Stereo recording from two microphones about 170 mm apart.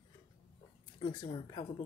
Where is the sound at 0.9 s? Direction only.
30° left (ahead or behind).